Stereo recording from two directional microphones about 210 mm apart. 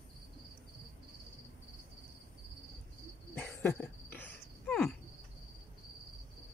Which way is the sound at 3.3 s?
10° left (ahead or behind).